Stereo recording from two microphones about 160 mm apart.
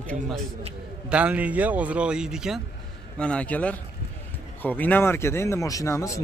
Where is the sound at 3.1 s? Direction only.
5° left (ahead or behind).